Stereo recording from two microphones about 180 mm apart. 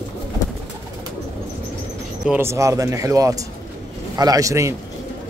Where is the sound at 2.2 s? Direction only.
15° right (ahead or behind).